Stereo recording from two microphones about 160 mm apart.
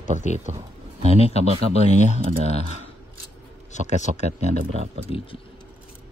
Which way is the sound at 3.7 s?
45° left (ahead or behind).